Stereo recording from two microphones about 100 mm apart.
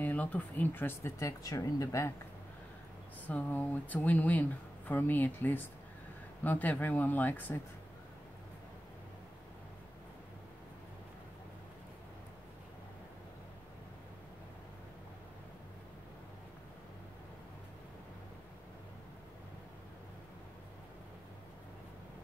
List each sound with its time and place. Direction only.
0.0 s speech: 15° left (ahead or behind)
1.2 s speech: 35° left (ahead or behind)
3.3 s speech: 15° left (ahead or behind)